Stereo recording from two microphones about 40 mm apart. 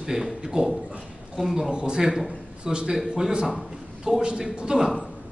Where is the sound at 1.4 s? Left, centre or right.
Centre.